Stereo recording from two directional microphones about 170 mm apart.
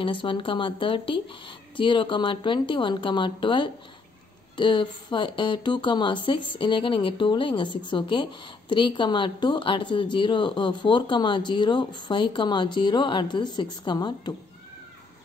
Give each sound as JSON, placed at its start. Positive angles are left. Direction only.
{"t": 0.0, "sound": "speech", "side_deg": 30}